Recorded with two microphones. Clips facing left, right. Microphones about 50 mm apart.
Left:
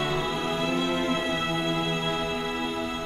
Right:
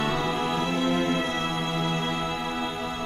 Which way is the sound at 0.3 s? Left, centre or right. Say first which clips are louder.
Right 2 dB; right.